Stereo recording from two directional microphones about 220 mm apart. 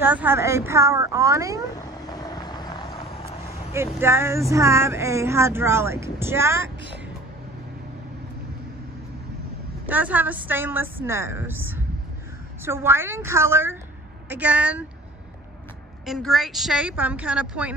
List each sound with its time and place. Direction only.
0.0 s speech: 10° right (ahead or behind)
1.8 s vehicle: 15° left (ahead or behind)
3.7 s speech: 10° right (ahead or behind)
9.8 s speech: 10° right (ahead or behind)
16.1 s a woman's voice: centre (ahead or behind)